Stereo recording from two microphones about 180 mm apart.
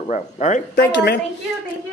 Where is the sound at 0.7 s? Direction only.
75° left (ahead or behind).